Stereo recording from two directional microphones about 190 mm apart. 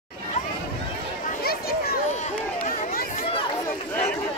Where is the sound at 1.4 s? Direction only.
55° left (ahead or behind).